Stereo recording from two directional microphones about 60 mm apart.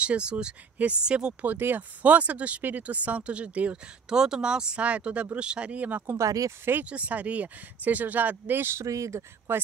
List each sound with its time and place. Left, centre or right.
0.0 s speech: centre
1.4 s speech: right
6.1 s speech: right
6.6 s speech: right
6.9 s speech: right
8.8 s speech: right
9.5 s speech: right